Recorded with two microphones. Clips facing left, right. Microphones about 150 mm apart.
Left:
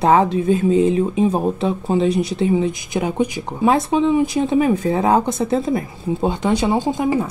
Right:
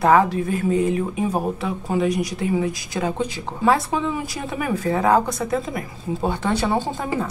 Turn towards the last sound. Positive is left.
turn(degrees=15)  # may be behind; listen again after turning